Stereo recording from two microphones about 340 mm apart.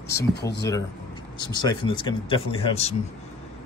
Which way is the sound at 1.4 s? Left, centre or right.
Centre.